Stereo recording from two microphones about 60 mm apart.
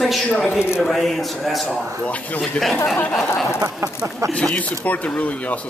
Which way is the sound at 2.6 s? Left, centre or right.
Centre.